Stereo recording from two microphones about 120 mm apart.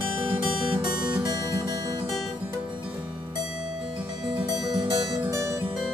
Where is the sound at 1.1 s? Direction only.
30° right (ahead or behind).